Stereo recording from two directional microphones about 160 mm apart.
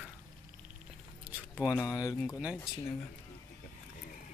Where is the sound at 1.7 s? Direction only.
20° left (ahead or behind).